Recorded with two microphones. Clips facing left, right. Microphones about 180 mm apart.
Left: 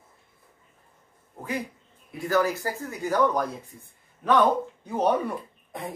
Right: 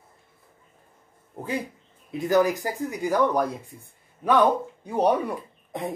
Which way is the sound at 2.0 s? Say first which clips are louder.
Right 3 dB; 20° right (ahead or behind).